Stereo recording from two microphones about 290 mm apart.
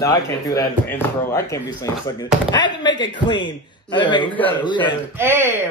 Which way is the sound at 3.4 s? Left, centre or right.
Centre.